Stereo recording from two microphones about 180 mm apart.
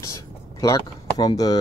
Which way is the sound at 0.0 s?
20° left (ahead or behind).